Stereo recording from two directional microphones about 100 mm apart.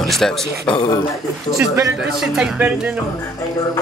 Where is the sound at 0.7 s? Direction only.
40° left (ahead or behind).